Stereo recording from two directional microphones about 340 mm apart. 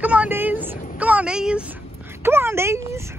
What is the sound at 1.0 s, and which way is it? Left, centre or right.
Speech, centre.